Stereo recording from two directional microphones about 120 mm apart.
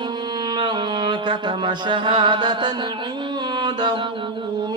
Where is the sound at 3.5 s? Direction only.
40° right (ahead or behind).